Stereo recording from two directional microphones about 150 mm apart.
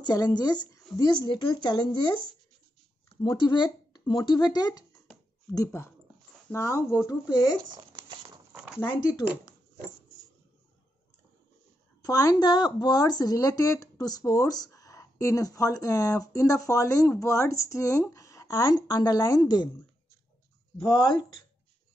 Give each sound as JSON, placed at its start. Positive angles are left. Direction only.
{"t": 0.0, "sound": "speech", "side_deg": 25}
{"t": 3.2, "sound": "speech", "side_deg": 30}
{"t": 7.7, "sound": "crumpling", "side_deg": -30}
{"t": 8.8, "sound": "speech", "side_deg": 30}
{"t": 12.0, "sound": "speech", "side_deg": 20}